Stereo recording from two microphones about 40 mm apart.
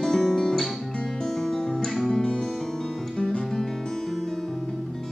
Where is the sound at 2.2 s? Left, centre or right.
Left.